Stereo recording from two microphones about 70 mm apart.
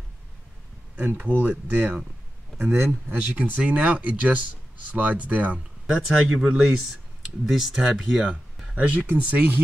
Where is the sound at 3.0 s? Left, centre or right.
Right.